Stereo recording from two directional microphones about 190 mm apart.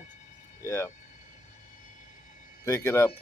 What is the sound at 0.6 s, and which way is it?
Speech, 15° left (ahead or behind).